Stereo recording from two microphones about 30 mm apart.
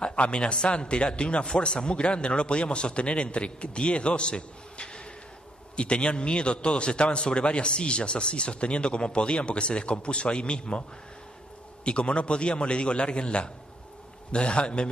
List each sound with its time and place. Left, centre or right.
0.0 s speech: left
11.8 s speech: left